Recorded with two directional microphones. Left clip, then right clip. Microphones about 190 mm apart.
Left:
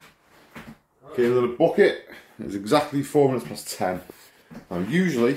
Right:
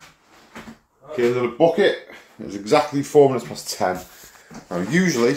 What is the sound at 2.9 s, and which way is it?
Speech, 10° left (ahead or behind).